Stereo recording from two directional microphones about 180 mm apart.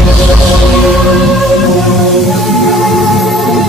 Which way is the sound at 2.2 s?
Centre (ahead or behind).